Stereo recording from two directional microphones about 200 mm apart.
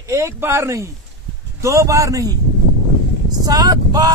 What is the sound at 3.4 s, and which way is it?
Speech, 20° right (ahead or behind).